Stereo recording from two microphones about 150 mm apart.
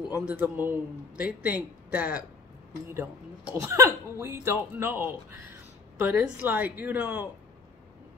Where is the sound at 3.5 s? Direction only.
20° right (ahead or behind).